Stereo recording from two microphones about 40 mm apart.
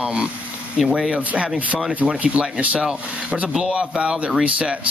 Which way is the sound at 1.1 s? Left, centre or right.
Right.